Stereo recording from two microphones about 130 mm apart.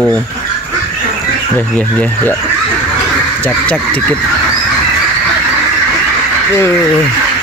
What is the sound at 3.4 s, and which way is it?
Speech, 10° left (ahead or behind).